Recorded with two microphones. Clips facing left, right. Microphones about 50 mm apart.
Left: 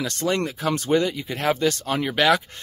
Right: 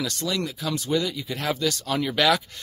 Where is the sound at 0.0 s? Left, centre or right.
Left.